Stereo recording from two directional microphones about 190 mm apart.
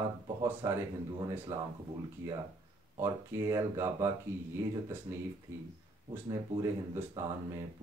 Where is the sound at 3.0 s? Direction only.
15° right (ahead or behind).